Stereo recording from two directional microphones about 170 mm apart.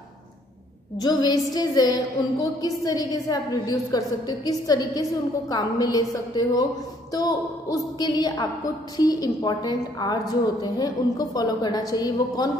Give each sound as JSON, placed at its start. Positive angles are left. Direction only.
{"t": 0.9, "sound": "a woman's voice", "side_deg": 25}